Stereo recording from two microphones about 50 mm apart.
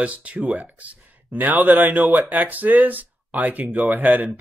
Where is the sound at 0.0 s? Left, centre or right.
Right.